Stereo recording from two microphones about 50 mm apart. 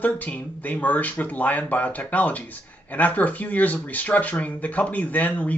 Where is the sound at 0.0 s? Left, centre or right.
Left.